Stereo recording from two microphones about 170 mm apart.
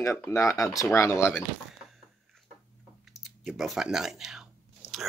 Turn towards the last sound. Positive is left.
turn(degrees=-5)  # may be behind; listen again after turning